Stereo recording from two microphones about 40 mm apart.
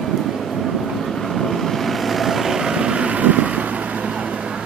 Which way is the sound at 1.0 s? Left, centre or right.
Centre.